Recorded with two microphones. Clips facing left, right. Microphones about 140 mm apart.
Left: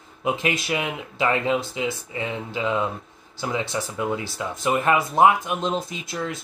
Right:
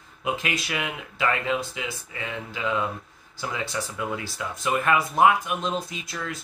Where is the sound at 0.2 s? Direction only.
25° left (ahead or behind).